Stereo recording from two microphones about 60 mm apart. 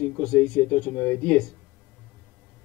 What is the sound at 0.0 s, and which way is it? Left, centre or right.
Speech, centre.